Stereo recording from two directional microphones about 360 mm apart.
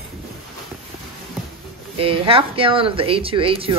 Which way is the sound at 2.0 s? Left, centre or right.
Centre.